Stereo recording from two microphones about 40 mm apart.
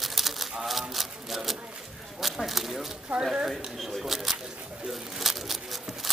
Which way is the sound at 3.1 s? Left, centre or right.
Right.